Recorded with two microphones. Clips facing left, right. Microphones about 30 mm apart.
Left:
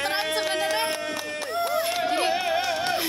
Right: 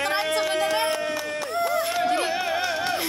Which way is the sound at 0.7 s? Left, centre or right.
Centre.